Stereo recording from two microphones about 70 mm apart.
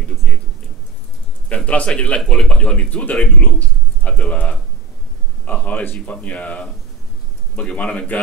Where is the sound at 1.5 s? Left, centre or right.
Centre.